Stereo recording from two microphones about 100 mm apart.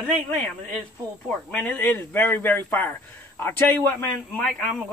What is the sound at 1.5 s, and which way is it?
A man's voice, 15° left (ahead or behind).